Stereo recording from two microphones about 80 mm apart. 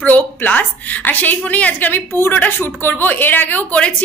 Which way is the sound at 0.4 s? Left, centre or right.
Left.